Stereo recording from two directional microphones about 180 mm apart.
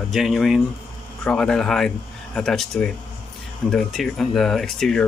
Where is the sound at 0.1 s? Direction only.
Centre (ahead or behind).